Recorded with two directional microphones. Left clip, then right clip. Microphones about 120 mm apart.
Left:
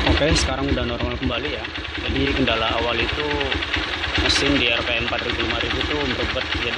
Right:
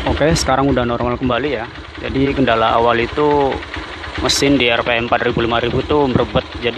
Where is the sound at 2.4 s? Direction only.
35° right (ahead or behind).